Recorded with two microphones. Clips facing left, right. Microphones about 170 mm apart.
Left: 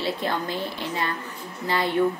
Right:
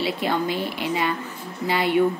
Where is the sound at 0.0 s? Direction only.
10° right (ahead or behind).